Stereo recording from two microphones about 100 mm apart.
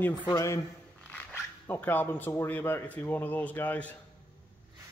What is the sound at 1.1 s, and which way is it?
Speech, 20° left (ahead or behind).